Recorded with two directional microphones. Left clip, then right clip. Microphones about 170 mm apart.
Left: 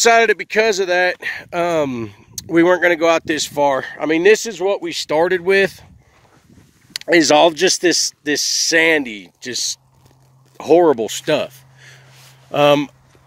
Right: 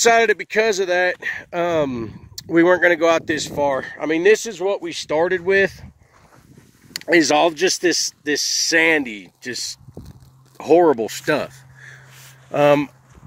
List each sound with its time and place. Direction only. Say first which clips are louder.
0.0 s speech: left 2 dB; 25° left (ahead or behind)
3.3 s speech: left 4 dB; 40° left (ahead or behind)
7.2 s speech: left 4 dB; 40° left (ahead or behind)
10.6 s speech: left 2 dB; 25° left (ahead or behind)
12.4 s speech: left 2 dB; 25° left (ahead or behind)